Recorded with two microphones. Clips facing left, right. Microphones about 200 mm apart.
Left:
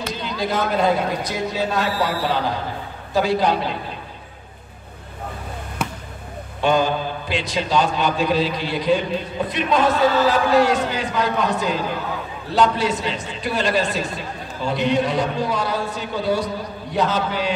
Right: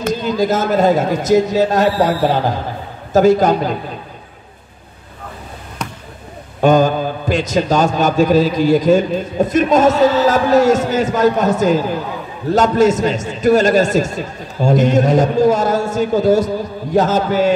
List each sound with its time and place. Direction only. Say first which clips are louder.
0.0 s a man's voice: right 9 dB; 45° right (ahead or behind)
5.8 s basketball bounce: even; 5° left (ahead or behind)
6.6 s a man's voice: right 7 dB; 45° right (ahead or behind)